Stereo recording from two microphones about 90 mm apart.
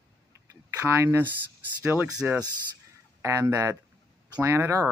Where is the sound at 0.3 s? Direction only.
35° right (ahead or behind).